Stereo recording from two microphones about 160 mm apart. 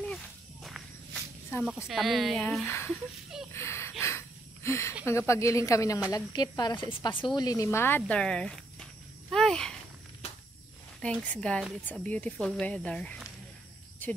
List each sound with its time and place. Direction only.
0.0 s walk: centre (ahead or behind)
1.6 s speech: 5° right (ahead or behind); by 2.9 s 15° left (ahead or behind)
2.9 s a sound: 5° right (ahead or behind)
3.5 s gasp: 15° left (ahead or behind)
4.6 s speech: 15° left (ahead or behind)
9.3 s a sound: 5° left (ahead or behind)
11.0 s speech: 10° left (ahead or behind)